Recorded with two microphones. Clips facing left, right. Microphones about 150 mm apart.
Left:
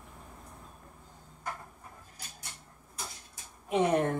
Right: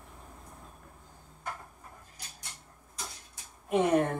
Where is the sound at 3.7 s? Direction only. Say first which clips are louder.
Right 1 dB; centre (ahead or behind).